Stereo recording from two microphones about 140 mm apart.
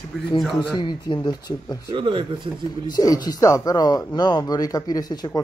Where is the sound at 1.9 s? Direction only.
35° right (ahead or behind).